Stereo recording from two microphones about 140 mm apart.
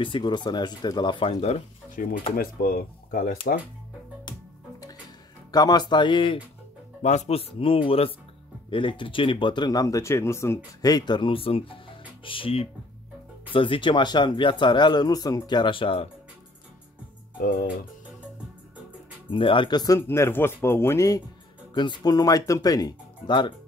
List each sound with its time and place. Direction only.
0.0 s speech: 35° left (ahead or behind)
2.0 s speech: 75° left (ahead or behind)
2.3 s speech: 90° left
4.3 s music: 25° left (ahead or behind)
5.5 s speech: 30° left (ahead or behind)
7.0 s speech: 55° left (ahead or behind); by 16.1 s 40° left (ahead or behind)
17.4 s speech: 80° left
19.3 s speech: 35° left (ahead or behind)
20.0 s speech: 15° left (ahead or behind)
21.7 s speech: 30° left (ahead or behind)